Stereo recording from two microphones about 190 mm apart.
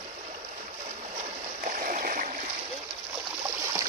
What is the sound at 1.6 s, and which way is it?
Splash, 45° right (ahead or behind).